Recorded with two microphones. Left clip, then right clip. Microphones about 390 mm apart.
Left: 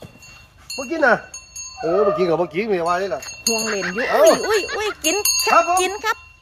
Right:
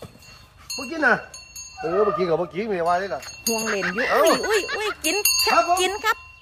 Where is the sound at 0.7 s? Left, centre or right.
Centre.